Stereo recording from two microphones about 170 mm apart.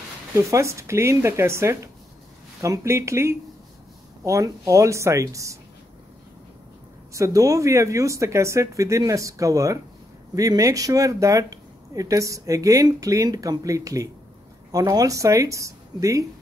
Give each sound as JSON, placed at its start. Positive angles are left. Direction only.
{"t": 0.4, "sound": "speech", "side_deg": -20}
{"t": 7.2, "sound": "speech", "side_deg": -20}